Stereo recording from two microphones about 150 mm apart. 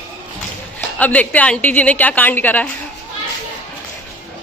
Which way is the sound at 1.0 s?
10° left (ahead or behind).